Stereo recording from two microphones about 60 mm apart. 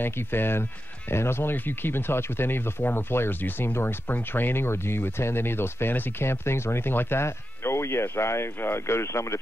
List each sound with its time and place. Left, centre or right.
0.0 s speech: left